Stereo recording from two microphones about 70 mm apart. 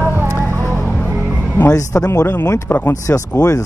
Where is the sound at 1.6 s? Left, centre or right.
Left.